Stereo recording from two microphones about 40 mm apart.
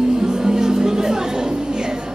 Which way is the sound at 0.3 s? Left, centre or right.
Centre.